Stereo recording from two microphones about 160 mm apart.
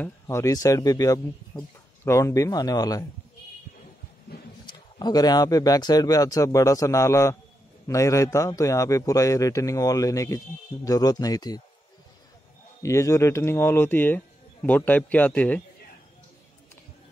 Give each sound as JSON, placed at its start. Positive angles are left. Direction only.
{"t": 0.0, "sound": "a man's voice", "side_deg": 15}
{"t": 4.6, "sound": "a man's voice", "side_deg": 25}
{"t": 12.8, "sound": "speech", "side_deg": 20}